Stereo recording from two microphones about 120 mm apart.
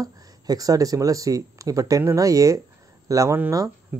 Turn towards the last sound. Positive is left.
turn(degrees=-25)  # may be behind; listen again after turning